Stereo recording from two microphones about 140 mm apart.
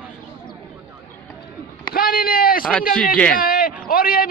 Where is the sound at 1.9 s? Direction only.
90° left.